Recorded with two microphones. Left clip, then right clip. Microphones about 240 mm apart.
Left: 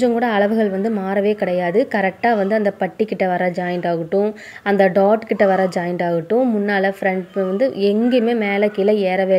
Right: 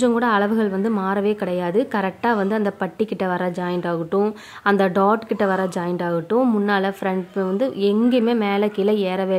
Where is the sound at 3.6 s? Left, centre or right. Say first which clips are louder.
Left 4 dB; right.